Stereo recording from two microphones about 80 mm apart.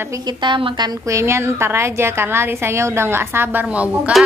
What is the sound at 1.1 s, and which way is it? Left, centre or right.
A woman's voice, right.